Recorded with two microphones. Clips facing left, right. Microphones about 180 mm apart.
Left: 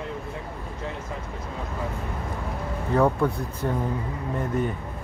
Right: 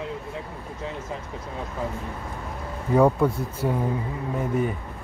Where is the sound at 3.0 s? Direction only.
10° right (ahead or behind).